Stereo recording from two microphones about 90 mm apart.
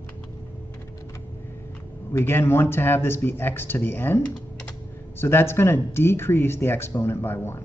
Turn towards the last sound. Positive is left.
turn(degrees=25)  # may be behind; listen again after turning